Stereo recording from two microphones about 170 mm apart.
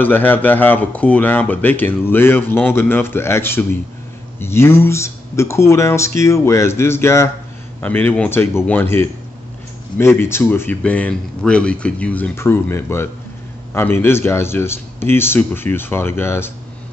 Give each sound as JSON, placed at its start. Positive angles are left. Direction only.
{"t": 0.0, "sound": "speech", "side_deg": 10}